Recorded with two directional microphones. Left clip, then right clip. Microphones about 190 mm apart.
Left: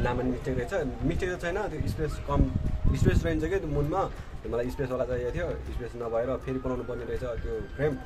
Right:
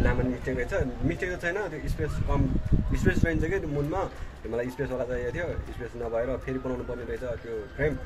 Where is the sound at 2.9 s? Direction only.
10° left (ahead or behind).